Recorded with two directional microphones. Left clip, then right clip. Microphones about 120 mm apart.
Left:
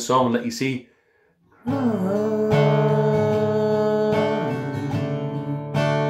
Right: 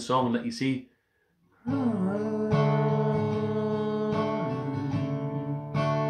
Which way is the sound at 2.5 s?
35° left (ahead or behind).